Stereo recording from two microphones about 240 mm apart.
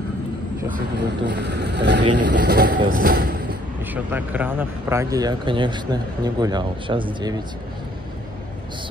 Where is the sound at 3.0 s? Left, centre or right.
Right.